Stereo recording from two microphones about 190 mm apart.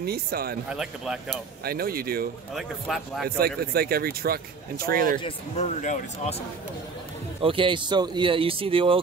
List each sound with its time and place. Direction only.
0.0 s speech: 55° right (ahead or behind)
0.7 s speech: 5° right (ahead or behind)
1.6 s speech: 55° right (ahead or behind)
2.5 s speech: centre (ahead or behind)
3.3 s speech: 55° right (ahead or behind)
5.2 s speech: 40° left (ahead or behind)
7.4 s speech: 25° right (ahead or behind)